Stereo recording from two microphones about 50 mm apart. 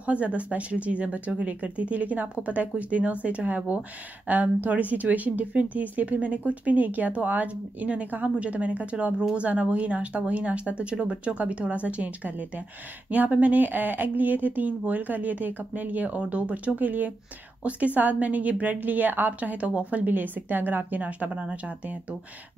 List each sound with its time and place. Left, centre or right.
0.0 s speech: right